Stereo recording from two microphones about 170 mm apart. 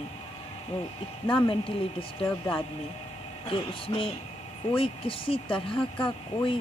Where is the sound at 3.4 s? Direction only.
30° left (ahead or behind).